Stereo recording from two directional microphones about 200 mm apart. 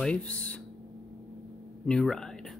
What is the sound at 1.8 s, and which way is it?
Speech, 5° left (ahead or behind).